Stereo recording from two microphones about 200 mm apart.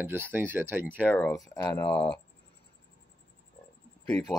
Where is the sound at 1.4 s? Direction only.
20° left (ahead or behind).